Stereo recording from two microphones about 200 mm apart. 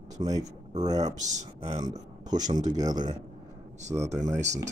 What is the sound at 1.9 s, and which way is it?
Speech, 35° right (ahead or behind).